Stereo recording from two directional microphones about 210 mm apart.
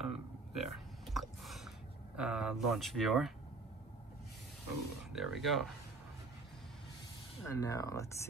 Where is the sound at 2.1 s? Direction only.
5° right (ahead or behind).